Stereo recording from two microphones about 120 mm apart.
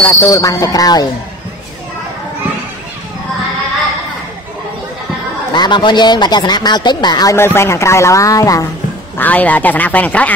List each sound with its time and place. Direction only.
0.2 s speech: 30° left (ahead or behind)
5.5 s a man's voice: 40° left (ahead or behind)
7.3 s speech: 20° left (ahead or behind)
9.2 s speech: 15° left (ahead or behind)